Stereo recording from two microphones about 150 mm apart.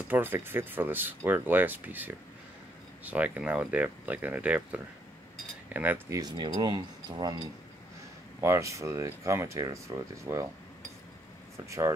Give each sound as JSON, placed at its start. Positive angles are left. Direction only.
{"t": 0.1, "sound": "speech", "side_deg": -15}
{"t": 11.5, "sound": "speech", "side_deg": -20}